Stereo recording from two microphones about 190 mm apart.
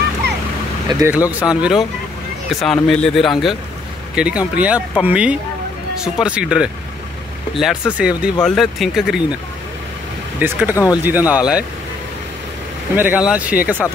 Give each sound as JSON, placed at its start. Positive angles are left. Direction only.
{"t": 0.8, "sound": "speech", "side_deg": -20}
{"t": 1.1, "sound": "speech", "side_deg": -5}
{"t": 10.4, "sound": "speech", "side_deg": -10}
{"t": 12.9, "sound": "speech", "side_deg": -10}